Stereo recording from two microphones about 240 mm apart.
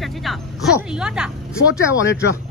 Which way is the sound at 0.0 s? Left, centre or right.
Centre.